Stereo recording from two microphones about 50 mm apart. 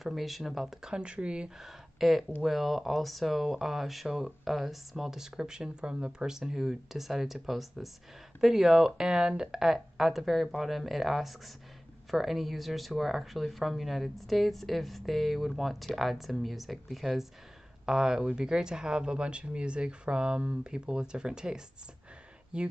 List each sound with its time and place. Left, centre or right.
0.0 s speech: centre
0.8 s speech: centre
1.6 s speech: centre